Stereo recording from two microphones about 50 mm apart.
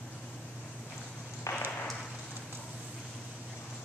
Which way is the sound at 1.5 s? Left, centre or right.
Left.